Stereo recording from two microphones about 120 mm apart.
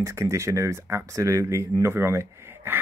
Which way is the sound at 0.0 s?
25° right (ahead or behind).